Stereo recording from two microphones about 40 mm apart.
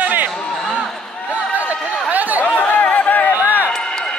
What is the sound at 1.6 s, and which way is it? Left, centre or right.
Chatter, right.